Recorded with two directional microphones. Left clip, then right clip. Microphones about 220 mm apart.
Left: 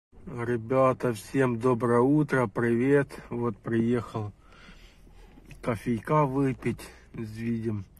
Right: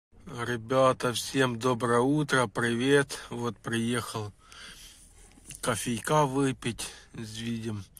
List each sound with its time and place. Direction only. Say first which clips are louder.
0.3 s speech: left 1 dB; 20° right (ahead or behind)